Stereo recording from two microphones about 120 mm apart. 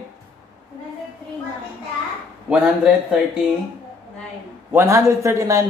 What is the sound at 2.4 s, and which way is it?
Speech, 5° right (ahead or behind).